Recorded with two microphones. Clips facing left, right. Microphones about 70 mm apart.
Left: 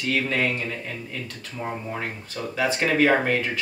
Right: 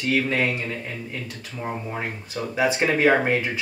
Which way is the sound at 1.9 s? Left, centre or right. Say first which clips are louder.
Right 1 dB; centre.